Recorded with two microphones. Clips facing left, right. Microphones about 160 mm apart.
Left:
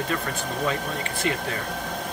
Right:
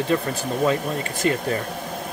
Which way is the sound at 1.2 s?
40° right (ahead or behind).